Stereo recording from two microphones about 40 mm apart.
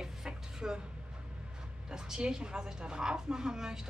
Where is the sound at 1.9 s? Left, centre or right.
Centre.